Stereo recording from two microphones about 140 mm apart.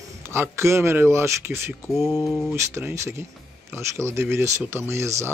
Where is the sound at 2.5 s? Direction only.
20° right (ahead or behind).